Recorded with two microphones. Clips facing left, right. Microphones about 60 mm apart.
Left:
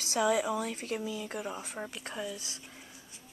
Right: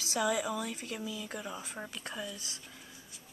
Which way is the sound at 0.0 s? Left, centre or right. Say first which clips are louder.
Left 3 dB; left.